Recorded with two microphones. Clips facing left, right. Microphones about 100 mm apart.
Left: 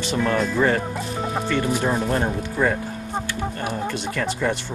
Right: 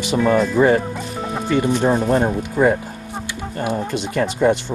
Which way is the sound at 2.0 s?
10° right (ahead or behind).